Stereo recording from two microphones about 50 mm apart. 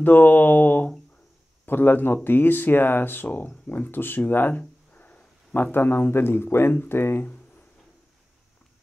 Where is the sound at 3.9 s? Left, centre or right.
Left.